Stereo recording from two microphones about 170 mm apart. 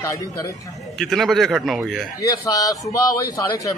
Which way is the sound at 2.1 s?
20° left (ahead or behind).